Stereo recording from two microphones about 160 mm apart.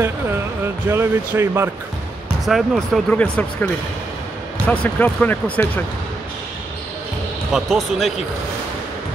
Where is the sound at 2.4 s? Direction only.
Centre (ahead or behind).